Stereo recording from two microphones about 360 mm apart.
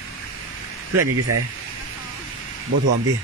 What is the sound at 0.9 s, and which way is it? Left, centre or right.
Speech, right.